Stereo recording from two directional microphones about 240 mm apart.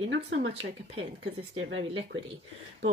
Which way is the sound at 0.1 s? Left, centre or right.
Right.